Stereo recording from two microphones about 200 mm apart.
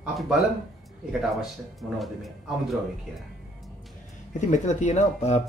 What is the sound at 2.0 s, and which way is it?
Speech, centre (ahead or behind).